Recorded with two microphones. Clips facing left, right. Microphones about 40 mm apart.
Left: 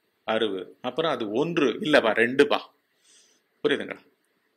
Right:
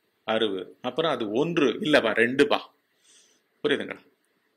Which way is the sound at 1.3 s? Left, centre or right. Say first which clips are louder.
Even; right.